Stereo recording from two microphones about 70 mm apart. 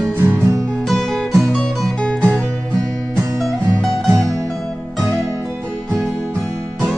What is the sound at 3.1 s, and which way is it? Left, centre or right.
Music, right.